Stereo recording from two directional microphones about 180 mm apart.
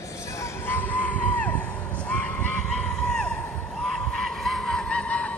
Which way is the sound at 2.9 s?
5° left (ahead or behind).